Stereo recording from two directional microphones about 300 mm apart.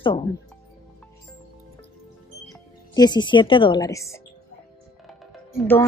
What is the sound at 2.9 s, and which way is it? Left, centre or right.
A woman's voice, centre.